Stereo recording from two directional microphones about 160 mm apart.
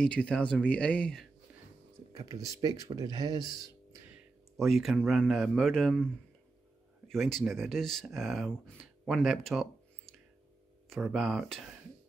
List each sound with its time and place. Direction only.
0.0 s speech: 5° left (ahead or behind)
2.1 s speech: 20° right (ahead or behind)
4.6 s speech: centre (ahead or behind)
7.1 s speech: centre (ahead or behind)